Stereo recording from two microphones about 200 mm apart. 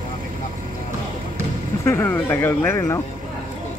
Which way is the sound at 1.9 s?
10° left (ahead or behind).